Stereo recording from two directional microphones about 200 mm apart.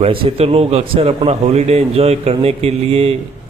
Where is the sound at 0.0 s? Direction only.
25° right (ahead or behind).